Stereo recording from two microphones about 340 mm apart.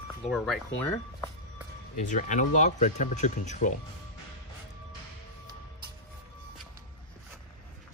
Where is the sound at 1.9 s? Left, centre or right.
Left.